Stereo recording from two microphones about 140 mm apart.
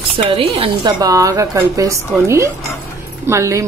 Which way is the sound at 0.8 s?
30° right (ahead or behind).